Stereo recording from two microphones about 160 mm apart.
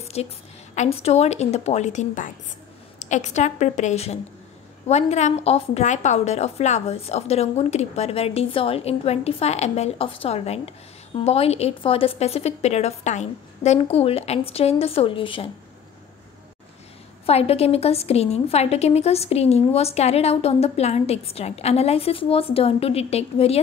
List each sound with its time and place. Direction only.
0.0 s a sound: 40° left (ahead or behind)
0.7 s a woman's voice: 40° left (ahead or behind)
17.3 s a woman's voice: 40° left (ahead or behind)